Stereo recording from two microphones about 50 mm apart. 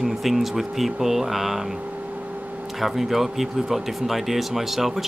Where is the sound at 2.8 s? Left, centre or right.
Centre.